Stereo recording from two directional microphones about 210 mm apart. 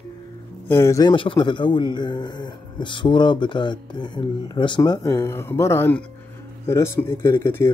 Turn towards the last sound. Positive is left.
turn(degrees=10)  # may be behind; listen again after turning